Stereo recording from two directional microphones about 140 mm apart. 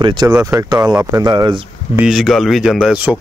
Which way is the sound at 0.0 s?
30° right (ahead or behind).